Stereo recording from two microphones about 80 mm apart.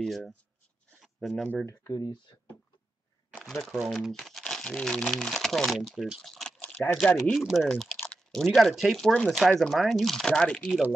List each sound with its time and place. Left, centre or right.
0.0 s speech: centre
1.0 s a sound: centre
1.7 s speech: left
3.3 s crumpling: centre
3.7 s speech: centre
6.8 s speech: centre
7.3 s speech: centre
7.7 s a sound: centre
8.5 s speech: centre
10.7 s speech: centre